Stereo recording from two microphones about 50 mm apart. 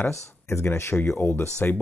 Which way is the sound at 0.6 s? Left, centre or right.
Left.